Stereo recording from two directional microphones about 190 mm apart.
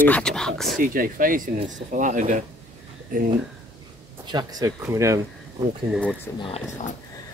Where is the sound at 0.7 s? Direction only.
45° right (ahead or behind).